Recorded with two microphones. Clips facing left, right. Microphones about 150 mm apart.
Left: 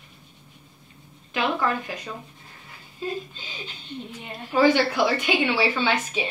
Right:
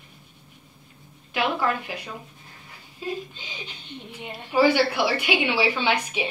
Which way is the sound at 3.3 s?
15° right (ahead or behind).